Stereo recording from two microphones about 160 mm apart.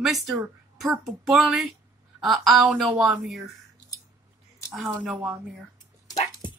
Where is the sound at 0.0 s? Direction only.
Centre (ahead or behind).